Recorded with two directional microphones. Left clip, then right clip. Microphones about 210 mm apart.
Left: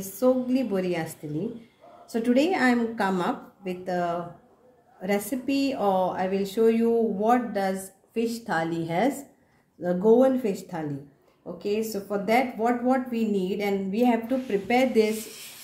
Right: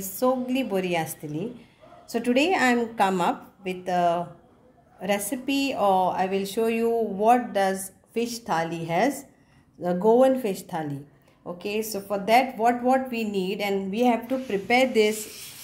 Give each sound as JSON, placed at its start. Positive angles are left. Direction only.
{"t": 0.0, "sound": "speech", "side_deg": -40}